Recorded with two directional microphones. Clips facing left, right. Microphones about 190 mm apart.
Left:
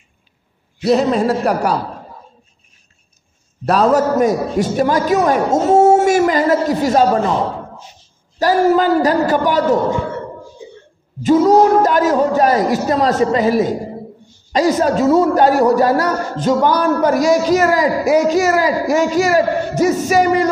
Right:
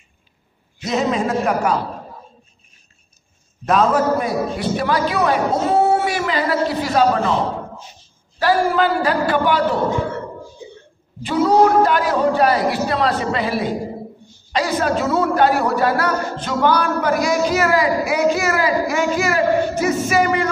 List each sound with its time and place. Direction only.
0.8 s speech: 35° left (ahead or behind)
3.6 s a man's voice: 35° left (ahead or behind)
8.4 s speech: 40° left (ahead or behind)
11.2 s a man's voice: 40° left (ahead or behind)